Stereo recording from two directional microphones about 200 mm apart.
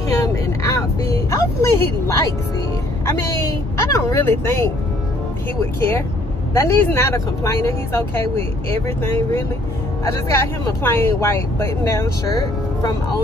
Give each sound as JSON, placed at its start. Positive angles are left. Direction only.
{"t": 0.1, "sound": "vehicle", "side_deg": 15}
{"t": 3.9, "sound": "speech", "side_deg": 15}